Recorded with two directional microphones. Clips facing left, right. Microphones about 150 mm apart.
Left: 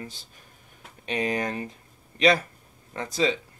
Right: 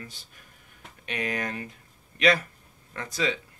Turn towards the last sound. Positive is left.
turn(degrees=30)  # may be behind; listen again after turning